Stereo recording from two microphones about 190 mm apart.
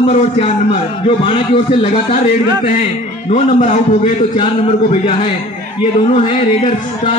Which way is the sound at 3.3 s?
40° left (ahead or behind).